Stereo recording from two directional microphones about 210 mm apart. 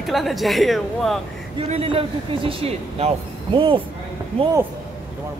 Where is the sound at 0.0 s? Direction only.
Centre (ahead or behind).